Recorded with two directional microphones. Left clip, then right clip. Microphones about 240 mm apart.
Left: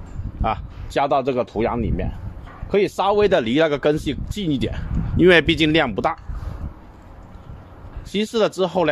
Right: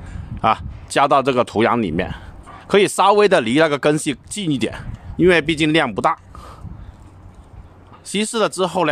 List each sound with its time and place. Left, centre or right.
0.4 s speech: centre
5.1 s speech: centre
8.1 s speech: right